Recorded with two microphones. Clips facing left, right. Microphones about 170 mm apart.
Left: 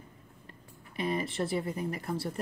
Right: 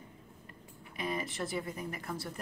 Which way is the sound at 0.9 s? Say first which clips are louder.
Left 5 dB; 30° left (ahead or behind).